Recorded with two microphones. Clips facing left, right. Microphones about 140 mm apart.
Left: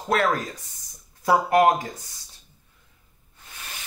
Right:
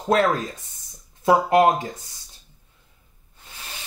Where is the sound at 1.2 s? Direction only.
25° right (ahead or behind).